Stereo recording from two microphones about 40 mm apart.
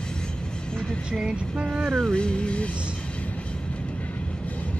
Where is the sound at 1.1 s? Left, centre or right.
Right.